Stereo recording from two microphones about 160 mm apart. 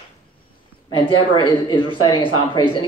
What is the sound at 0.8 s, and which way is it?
Speech, 30° left (ahead or behind).